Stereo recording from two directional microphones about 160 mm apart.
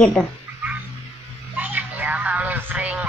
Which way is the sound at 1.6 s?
10° right (ahead or behind).